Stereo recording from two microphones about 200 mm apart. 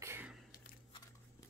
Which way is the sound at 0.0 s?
10° right (ahead or behind).